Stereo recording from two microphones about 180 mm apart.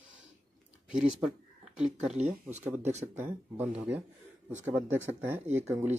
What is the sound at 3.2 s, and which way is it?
Speech, 10° right (ahead or behind).